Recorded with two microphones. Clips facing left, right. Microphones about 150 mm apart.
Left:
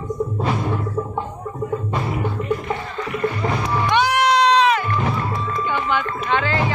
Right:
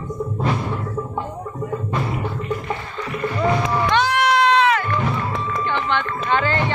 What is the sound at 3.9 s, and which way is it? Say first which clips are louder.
Crowd: left 2 dB; 15° left (ahead or behind).